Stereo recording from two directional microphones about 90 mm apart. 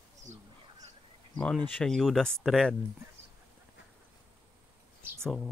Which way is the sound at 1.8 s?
5° left (ahead or behind).